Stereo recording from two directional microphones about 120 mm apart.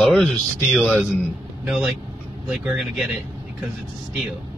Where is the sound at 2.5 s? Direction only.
5° right (ahead or behind).